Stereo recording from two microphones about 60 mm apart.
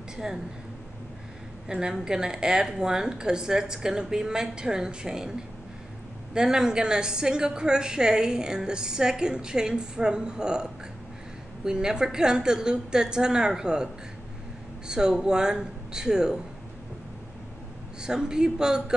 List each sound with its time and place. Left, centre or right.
0.1 s a woman's voice: centre
1.7 s a woman's voice: centre
6.3 s a woman's voice: centre
14.9 s a woman's voice: centre
18.0 s a woman's voice: centre